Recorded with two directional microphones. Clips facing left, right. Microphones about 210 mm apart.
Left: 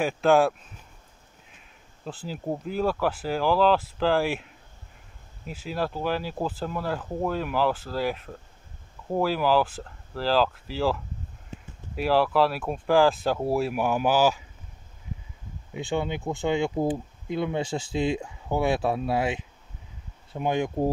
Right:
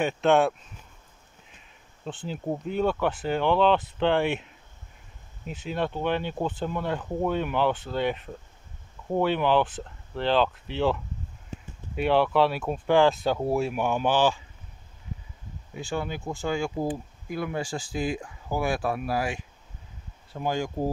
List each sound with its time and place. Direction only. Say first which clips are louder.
0.0 s speech: left 1 dB; centre (ahead or behind)
2.0 s speech: even; 5° left (ahead or behind)
15.7 s speech: left 3 dB; 20° left (ahead or behind)